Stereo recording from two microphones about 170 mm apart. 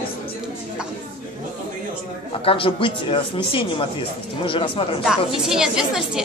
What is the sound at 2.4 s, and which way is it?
Speech, 30° left (ahead or behind).